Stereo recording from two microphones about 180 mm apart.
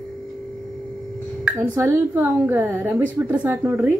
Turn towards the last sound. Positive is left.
turn(degrees=-15)  # may be behind; listen again after turning